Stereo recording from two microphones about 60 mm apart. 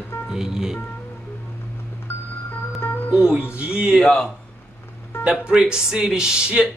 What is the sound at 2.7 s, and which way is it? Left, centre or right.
Music, left.